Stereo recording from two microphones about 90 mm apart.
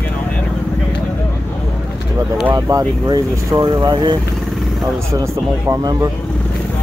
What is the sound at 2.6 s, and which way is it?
Speech, 40° right (ahead or behind).